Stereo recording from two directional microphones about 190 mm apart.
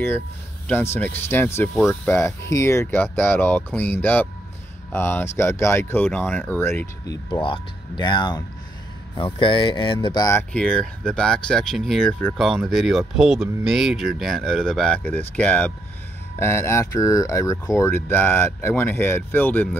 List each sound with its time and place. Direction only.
0.9 s speech: 10° left (ahead or behind)
10.5 s speech: 5° left (ahead or behind)